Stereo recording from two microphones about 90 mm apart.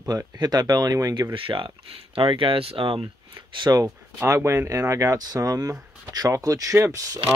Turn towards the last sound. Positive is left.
turn(degrees=-40)  # may be behind; listen again after turning